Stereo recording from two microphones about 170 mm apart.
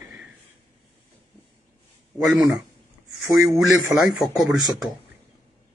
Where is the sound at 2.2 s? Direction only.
5° right (ahead or behind).